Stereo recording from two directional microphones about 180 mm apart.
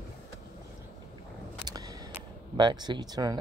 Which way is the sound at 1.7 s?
20° right (ahead or behind).